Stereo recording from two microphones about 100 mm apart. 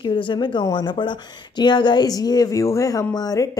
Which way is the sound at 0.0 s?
50° left (ahead or behind).